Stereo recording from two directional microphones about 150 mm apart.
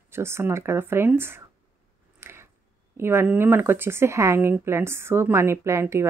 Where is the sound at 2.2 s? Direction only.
15° right (ahead or behind).